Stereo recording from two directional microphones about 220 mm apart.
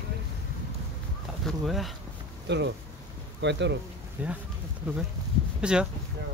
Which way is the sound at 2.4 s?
50° right (ahead or behind).